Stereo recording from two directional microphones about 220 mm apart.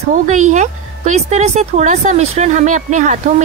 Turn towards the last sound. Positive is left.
turn(degrees=-35)  # may be behind; listen again after turning